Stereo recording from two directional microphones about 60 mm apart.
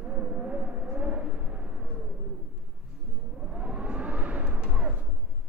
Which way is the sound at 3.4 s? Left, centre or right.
Centre.